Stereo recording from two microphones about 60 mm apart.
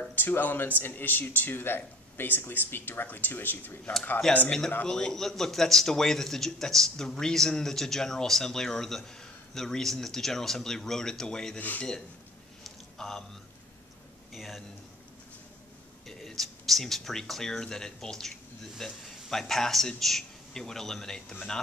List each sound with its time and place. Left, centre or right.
0.1 s speech: left
4.5 s a man's voice: centre
11.5 s speech: left
12.6 s a sound: centre
14.3 s a man's voice: centre
16.1 s a man's voice: centre